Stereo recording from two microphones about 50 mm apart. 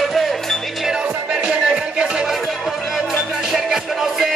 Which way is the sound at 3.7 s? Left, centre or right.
Centre.